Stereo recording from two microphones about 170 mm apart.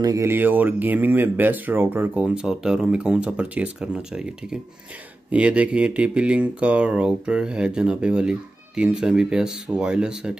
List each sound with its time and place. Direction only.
0.0 s speech: 20° right (ahead or behind)